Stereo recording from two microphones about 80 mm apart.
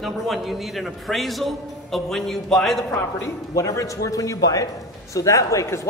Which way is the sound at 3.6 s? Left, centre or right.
Left.